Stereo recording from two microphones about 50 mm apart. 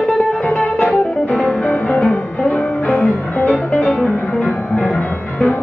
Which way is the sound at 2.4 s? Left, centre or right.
Left.